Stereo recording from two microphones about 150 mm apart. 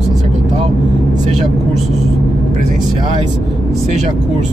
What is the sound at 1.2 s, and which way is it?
Vehicle, 50° right (ahead or behind).